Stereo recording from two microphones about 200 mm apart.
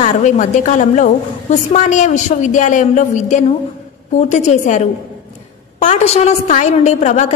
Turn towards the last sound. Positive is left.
turn(degrees=35)  # may be behind; listen again after turning